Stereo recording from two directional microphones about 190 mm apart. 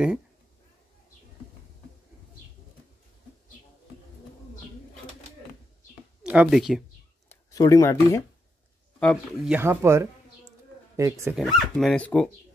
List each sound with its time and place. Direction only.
6.2 s speech: 5° right (ahead or behind)
7.2 s speech: 15° left (ahead or behind)
9.0 s speech: centre (ahead or behind); by 11.3 s 15° right (ahead or behind)
11.3 s speech: centre (ahead or behind)